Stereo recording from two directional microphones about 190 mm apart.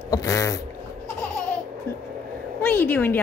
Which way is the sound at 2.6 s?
10° left (ahead or behind).